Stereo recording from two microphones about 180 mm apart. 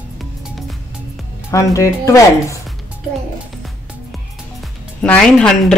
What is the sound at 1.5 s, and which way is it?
Speech, 15° left (ahead or behind).